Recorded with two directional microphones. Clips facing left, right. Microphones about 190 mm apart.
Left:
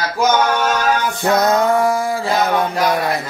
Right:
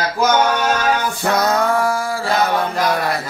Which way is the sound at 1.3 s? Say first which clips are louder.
Left 3 dB; 20° left (ahead or behind).